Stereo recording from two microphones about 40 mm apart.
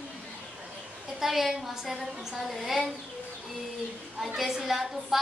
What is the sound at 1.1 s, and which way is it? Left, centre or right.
A woman's voice, centre.